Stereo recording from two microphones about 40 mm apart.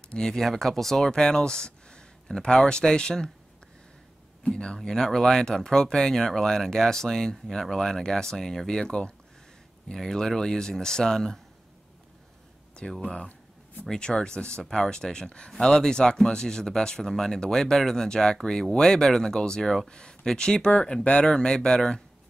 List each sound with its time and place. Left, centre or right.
0.1 s speech: centre
4.5 s speech: left
13.0 s speech: left